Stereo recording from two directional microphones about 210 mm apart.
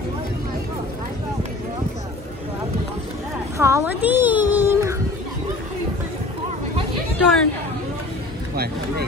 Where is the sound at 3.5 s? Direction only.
15° right (ahead or behind).